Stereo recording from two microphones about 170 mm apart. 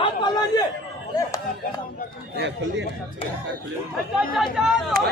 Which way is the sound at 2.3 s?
90° right.